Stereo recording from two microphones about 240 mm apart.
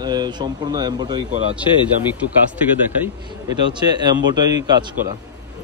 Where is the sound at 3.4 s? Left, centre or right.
Centre.